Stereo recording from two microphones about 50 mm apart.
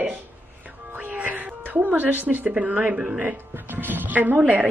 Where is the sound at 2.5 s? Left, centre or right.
Right.